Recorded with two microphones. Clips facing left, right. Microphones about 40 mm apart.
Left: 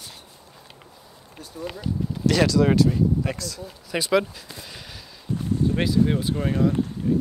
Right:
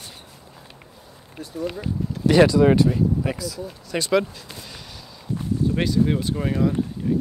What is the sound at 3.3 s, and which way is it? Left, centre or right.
Speech, centre.